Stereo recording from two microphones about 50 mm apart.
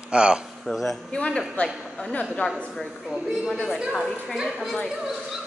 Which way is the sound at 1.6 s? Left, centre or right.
Left.